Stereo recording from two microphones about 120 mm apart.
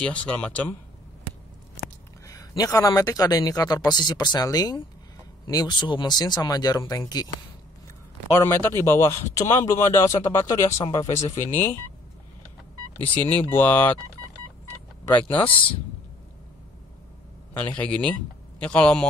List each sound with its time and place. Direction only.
0.0 s speech: 10° left (ahead or behind)
2.2 s speech: 30° left (ahead or behind)
8.3 s speech: 20° left (ahead or behind)
13.3 s speech: 15° left (ahead or behind)
17.6 s speech: 10° left (ahead or behind)